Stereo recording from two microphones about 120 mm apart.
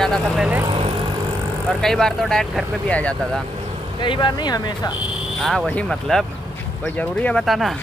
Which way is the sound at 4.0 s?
40° left (ahead or behind).